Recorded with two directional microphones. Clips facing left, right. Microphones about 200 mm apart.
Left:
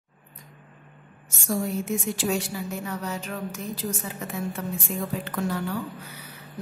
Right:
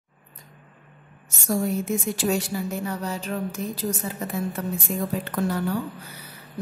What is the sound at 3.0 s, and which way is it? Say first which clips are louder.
Speech: right 3 dB; 35° right (ahead or behind).